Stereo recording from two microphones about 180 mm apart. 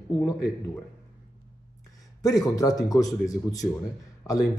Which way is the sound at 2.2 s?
20° left (ahead or behind).